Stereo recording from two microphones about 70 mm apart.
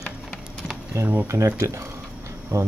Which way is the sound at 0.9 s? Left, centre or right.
Right.